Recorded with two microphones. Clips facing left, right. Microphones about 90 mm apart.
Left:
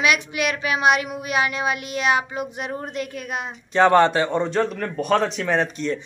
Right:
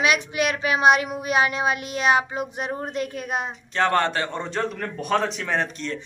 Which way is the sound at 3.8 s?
15° left (ahead or behind).